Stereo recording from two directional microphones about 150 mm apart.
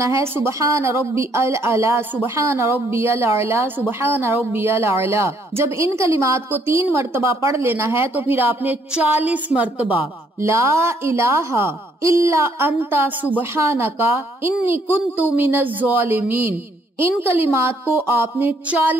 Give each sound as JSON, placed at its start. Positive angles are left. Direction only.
{"t": 0.0, "sound": "a woman's voice", "side_deg": -20}